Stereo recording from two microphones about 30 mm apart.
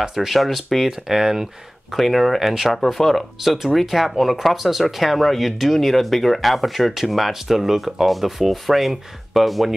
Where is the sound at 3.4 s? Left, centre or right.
Centre.